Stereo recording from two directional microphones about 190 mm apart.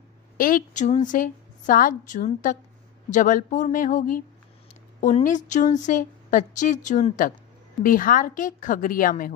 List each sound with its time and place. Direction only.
0.4 s a woman's voice: 45° left (ahead or behind)